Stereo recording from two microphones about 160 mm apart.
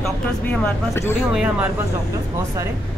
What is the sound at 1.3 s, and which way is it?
Speech, 5° right (ahead or behind).